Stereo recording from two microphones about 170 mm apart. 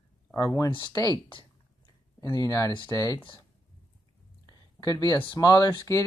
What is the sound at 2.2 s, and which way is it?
Speech, 20° left (ahead or behind).